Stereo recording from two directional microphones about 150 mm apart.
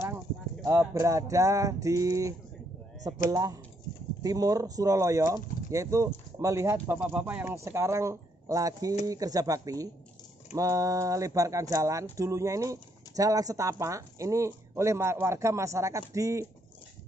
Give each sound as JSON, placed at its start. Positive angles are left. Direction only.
{"t": 0.7, "sound": "speech", "side_deg": -20}